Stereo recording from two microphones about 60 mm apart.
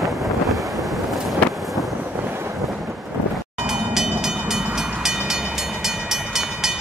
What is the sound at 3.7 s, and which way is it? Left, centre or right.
Train, centre.